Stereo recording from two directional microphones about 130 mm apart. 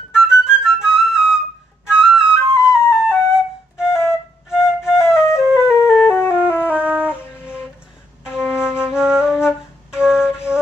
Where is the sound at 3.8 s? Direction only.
20° left (ahead or behind).